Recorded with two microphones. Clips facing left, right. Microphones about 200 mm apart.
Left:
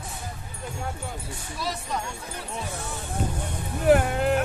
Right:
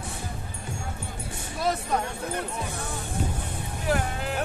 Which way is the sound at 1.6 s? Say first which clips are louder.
Right 5 dB; 55° right (ahead or behind).